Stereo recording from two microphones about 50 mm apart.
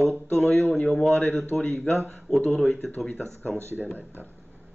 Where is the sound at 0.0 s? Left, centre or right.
Centre.